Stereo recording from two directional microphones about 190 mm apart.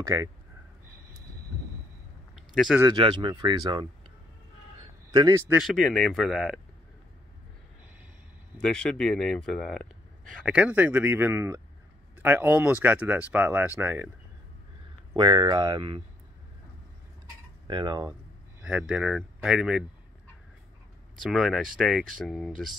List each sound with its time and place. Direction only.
2.3 s a sound: centre (ahead or behind)
2.8 s speech: 25° right (ahead or behind)
5.1 s a man's voice: 20° right (ahead or behind)
5.5 s speech: centre (ahead or behind)
8.5 s speech: 5° left (ahead or behind)
15.1 s speech: 20° right (ahead or behind)
17.6 s speech: 25° right (ahead or behind)
18.6 s speech: 5° right (ahead or behind)
21.2 s speech: centre (ahead or behind)